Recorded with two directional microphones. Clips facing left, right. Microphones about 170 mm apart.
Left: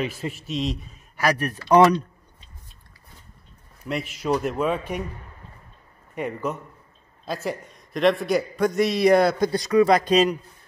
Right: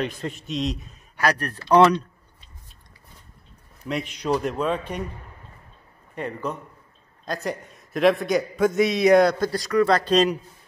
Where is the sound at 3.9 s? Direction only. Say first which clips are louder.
Even; 5° left (ahead or behind).